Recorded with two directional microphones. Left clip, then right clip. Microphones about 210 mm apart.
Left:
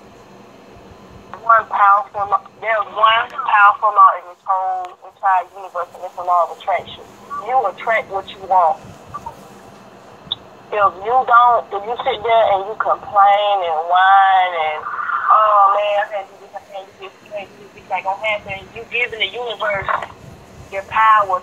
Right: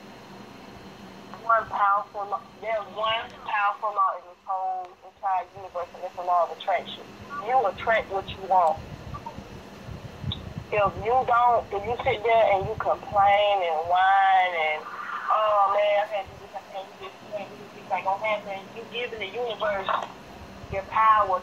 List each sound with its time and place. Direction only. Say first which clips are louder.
1.5 s speech: left 10 dB; 30° left (ahead or behind)
2.6 s speech: left 11 dB; 40° left (ahead or behind)
3.0 s speech: left 14 dB; 15° left (ahead or behind)
3.8 s speech: left 14 dB; 30° left (ahead or behind); by 8.7 s 10° left (ahead or behind)
10.7 s speech: left 8 dB; 5° left (ahead or behind)
17.8 s speech: left 6 dB; 45° left (ahead or behind)
18.9 s speech: left 11 dB; 25° left (ahead or behind)